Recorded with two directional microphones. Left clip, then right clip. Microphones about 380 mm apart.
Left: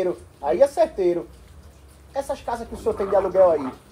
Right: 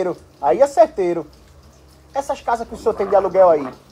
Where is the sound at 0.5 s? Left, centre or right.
Right.